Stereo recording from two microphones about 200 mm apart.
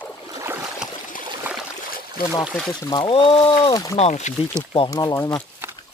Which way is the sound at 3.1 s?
25° left (ahead or behind).